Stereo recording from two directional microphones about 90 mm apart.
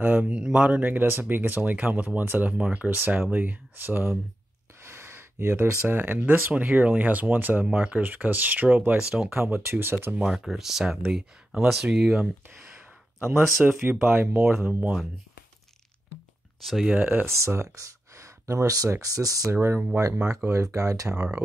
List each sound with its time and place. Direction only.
0.0 s speech: 15° right (ahead or behind)
4.9 s a sound: 30° right (ahead or behind)
5.9 s speech: 20° right (ahead or behind)
9.3 s speech: 25° right (ahead or behind)
10.1 s speech: 5° right (ahead or behind)
13.2 s speech: 30° right (ahead or behind)
16.6 s speech: centre (ahead or behind)
16.9 s speech: 20° right (ahead or behind); by 19.5 s 40° right (ahead or behind)
19.5 s speech: 30° right (ahead or behind)
21.1 s speech: 10° right (ahead or behind)